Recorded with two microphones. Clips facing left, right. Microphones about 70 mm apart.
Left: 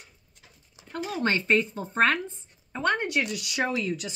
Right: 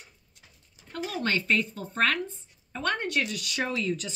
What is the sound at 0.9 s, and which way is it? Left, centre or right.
Speech, left.